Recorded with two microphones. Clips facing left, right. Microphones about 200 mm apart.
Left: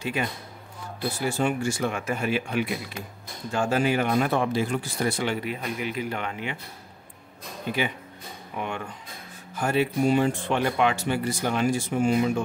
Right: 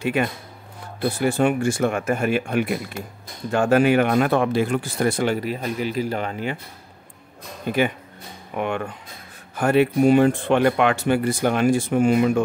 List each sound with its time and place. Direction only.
0.0 s speech: 60° right (ahead or behind)
3.5 s speech: 60° right (ahead or behind); by 6.6 s 40° right (ahead or behind)
7.7 s speech: 50° right (ahead or behind)
8.5 s speech: 60° right (ahead or behind)